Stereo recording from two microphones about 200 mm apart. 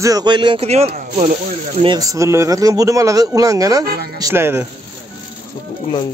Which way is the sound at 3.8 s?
50° right (ahead or behind).